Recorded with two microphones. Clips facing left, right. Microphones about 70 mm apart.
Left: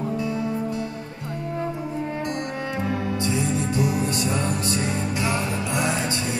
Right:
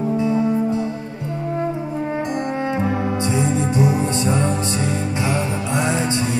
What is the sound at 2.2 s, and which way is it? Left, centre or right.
Music, right.